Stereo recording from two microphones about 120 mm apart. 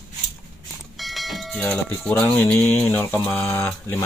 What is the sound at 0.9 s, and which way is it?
Vehicle, centre (ahead or behind).